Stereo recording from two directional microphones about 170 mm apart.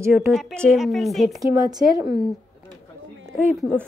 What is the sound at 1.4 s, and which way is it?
Speech, 20° right (ahead or behind).